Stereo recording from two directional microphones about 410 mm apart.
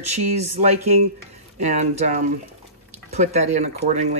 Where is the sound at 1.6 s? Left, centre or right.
Centre.